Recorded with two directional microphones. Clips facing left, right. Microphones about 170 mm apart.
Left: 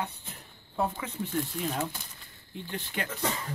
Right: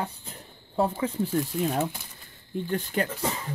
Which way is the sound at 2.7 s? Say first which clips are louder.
Right 7 dB; 40° right (ahead or behind).